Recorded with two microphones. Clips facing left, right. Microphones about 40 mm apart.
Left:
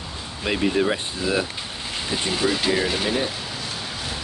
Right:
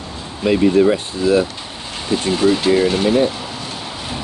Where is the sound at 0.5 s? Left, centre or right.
Centre.